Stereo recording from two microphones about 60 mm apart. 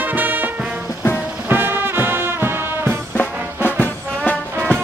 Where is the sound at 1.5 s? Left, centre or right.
Right.